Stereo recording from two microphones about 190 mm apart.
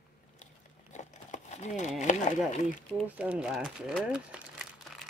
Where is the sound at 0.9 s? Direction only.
40° left (ahead or behind).